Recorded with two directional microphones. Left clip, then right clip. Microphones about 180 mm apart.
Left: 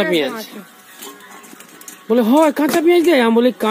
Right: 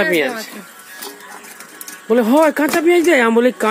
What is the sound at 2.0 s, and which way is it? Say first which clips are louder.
Speech: right 1 dB; 5° left (ahead or behind).